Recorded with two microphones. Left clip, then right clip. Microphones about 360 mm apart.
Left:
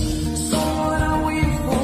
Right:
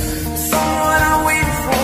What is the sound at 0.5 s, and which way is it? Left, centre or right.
Music, right.